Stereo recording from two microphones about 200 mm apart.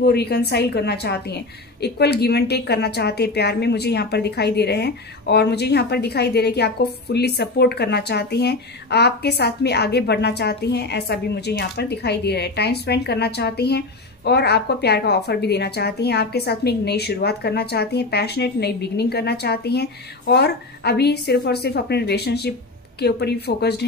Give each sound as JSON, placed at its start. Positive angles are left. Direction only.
{"t": 0.0, "sound": "a woman's voice", "side_deg": 55}